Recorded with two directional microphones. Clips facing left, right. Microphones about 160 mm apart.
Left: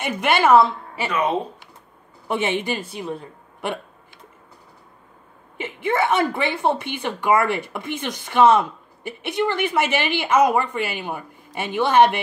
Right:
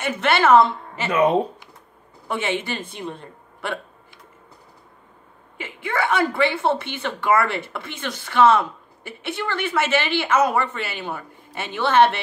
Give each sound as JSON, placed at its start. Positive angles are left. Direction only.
{"t": 0.0, "sound": "speech", "side_deg": 15}
{"t": 2.2, "sound": "speech", "side_deg": 15}
{"t": 5.6, "sound": "speech", "side_deg": 20}